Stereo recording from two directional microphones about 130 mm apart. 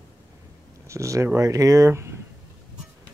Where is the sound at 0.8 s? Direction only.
25° right (ahead or behind).